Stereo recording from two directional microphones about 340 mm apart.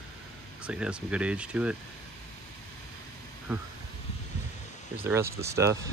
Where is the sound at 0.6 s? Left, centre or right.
Centre.